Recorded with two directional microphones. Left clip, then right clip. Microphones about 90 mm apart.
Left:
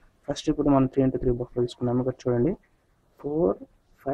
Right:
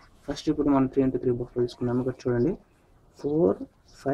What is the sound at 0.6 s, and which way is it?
Speech, 5° left (ahead or behind).